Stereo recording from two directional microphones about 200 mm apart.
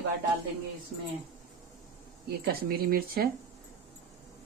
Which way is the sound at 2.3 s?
50° right (ahead or behind).